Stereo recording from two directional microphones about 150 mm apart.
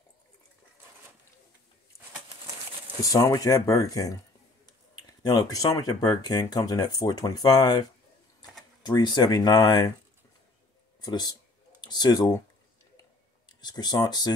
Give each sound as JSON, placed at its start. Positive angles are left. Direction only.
{"t": 3.0, "sound": "speech", "side_deg": 25}
{"t": 8.8, "sound": "speech", "side_deg": 30}
{"t": 11.0, "sound": "speech", "side_deg": 25}
{"t": 13.5, "sound": "speech", "side_deg": 30}